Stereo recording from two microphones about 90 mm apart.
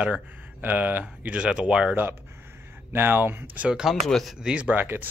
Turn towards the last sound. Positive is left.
turn(degrees=-20)  # may be behind; listen again after turning